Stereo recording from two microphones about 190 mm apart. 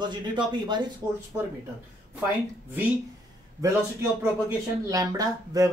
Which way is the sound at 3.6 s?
15° right (ahead or behind).